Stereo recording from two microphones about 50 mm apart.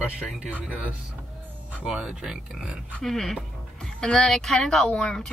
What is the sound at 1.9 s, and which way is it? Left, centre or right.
Speech, centre.